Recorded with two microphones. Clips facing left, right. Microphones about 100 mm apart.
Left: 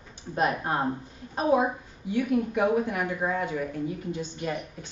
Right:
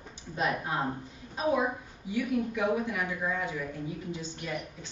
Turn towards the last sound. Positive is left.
turn(degrees=50)  # may be behind; listen again after turning